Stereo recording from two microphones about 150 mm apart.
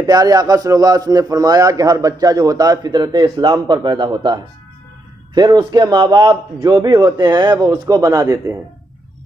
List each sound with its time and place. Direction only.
0.0 s a man's voice: 25° right (ahead or behind)